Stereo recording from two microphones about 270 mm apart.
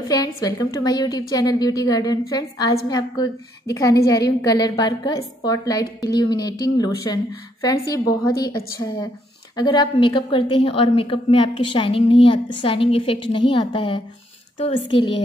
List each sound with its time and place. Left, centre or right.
0.1 s a woman's voice: centre
9.6 s a woman's voice: centre